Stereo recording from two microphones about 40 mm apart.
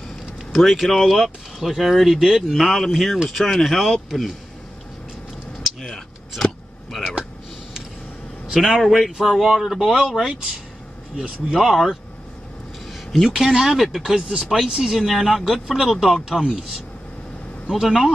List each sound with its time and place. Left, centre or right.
0.5 s speech: centre
2.4 s speech: centre
5.8 s vehicle: centre
8.7 s speech: centre
11.5 s speech: centre
12.9 s a sound: centre
13.4 s speech: centre
15.0 s speech: centre